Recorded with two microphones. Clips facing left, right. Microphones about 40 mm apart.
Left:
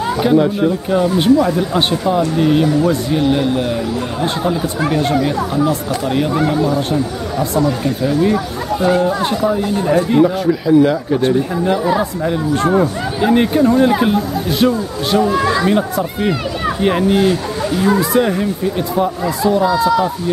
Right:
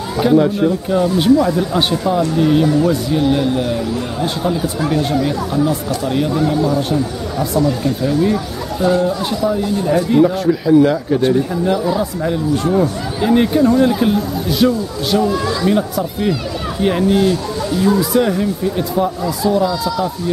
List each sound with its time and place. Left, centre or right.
0.2 s speech: centre
6.3 s speech: left
6.6 s speech: centre
10.2 s speech: centre
12.8 s speech: centre; by 15.7 s left
15.7 s speech: centre
18.1 s speech: centre
19.6 s speech: left